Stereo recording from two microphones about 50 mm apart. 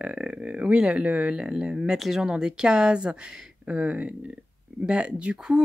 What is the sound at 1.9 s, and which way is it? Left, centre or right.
Speech, centre.